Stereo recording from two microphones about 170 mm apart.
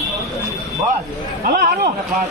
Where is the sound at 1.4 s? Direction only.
65° right (ahead or behind).